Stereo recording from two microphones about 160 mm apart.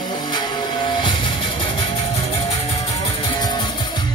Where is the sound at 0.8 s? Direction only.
30° left (ahead or behind).